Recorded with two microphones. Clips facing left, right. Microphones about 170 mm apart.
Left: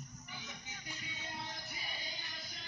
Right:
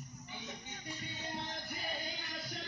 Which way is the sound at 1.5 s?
50° right (ahead or behind).